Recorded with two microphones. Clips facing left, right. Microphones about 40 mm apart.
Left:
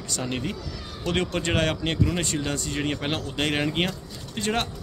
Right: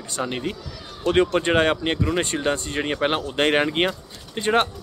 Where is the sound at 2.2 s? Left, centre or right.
Right.